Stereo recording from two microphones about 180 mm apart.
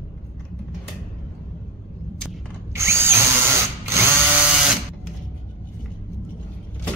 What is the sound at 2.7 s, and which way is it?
Drill, 15° right (ahead or behind).